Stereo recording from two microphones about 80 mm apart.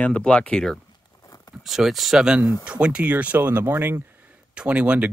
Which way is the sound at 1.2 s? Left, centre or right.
Left.